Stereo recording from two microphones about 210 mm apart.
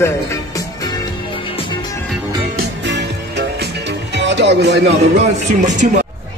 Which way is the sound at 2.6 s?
55° right (ahead or behind).